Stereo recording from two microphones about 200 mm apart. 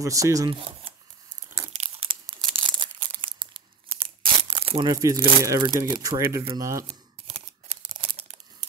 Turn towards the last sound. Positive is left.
turn(degrees=-30)  # may be behind; listen again after turning